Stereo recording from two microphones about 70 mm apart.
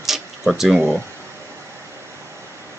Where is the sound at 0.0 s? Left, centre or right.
Centre.